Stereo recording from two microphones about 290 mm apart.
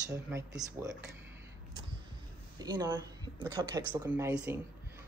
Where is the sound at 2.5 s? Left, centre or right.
Centre.